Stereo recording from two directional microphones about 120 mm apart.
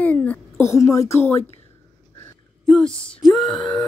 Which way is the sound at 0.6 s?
25° left (ahead or behind).